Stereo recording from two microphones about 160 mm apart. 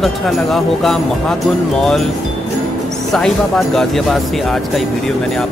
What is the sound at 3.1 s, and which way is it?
Speech, centre (ahead or behind).